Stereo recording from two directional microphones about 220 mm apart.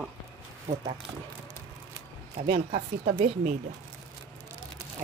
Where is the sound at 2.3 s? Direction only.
30° right (ahead or behind).